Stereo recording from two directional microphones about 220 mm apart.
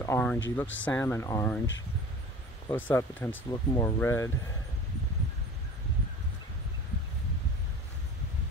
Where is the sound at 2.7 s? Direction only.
10° left (ahead or behind).